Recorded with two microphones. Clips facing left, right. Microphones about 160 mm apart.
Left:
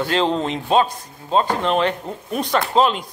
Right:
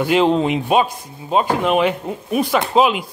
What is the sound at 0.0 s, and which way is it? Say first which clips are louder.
Speech: right 5 dB; 10° right (ahead or behind).